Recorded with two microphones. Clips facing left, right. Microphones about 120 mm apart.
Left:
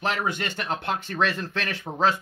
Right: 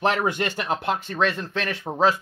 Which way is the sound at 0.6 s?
10° right (ahead or behind).